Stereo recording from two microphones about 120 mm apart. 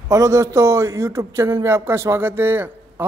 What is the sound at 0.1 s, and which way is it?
A woman's voice, 25° right (ahead or behind).